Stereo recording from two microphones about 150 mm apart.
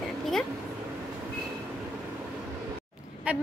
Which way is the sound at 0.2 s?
Centre (ahead or behind).